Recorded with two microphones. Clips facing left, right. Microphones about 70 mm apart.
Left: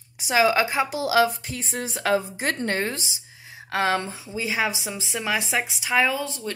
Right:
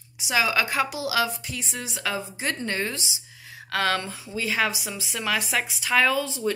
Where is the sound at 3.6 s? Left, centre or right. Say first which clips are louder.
Left 2 dB; left.